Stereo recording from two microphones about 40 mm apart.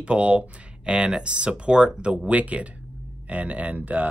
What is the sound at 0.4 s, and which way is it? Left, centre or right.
Speech, centre.